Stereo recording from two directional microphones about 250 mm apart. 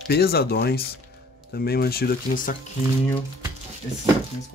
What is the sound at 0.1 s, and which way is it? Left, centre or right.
Speech, left.